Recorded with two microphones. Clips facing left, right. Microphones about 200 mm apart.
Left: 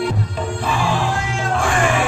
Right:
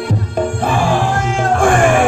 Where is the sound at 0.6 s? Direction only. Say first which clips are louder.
Right 3 dB; 50° right (ahead or behind).